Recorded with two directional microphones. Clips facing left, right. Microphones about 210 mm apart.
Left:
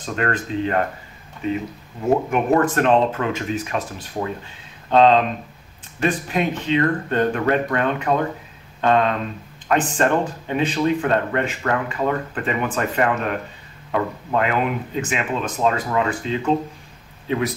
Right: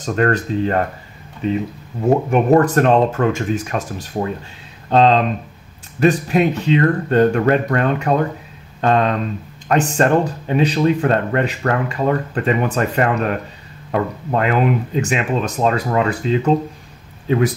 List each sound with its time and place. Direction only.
0.0 s speech: 40° right (ahead or behind)
2.3 s speech: 40° right (ahead or behind)
14.3 s speech: 40° right (ahead or behind)